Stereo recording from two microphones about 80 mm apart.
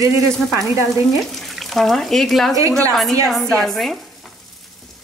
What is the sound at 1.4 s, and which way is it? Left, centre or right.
Speech, centre.